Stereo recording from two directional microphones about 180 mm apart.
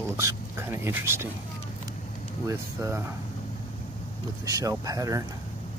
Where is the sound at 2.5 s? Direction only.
15° right (ahead or behind).